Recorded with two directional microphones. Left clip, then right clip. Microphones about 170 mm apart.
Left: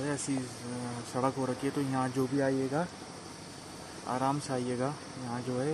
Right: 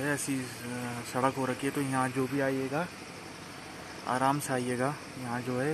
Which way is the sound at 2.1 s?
25° left (ahead or behind).